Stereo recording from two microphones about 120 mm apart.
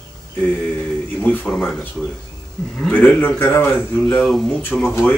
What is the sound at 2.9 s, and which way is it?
Speech, 15° left (ahead or behind).